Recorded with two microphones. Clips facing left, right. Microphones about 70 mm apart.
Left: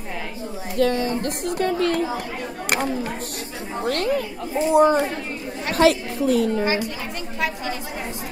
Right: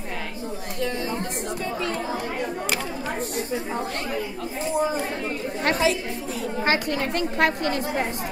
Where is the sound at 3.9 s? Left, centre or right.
Left.